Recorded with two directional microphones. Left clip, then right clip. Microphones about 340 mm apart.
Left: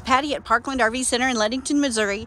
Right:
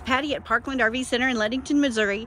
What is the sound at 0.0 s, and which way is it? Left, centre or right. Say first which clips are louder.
Speech: left 4 dB; centre.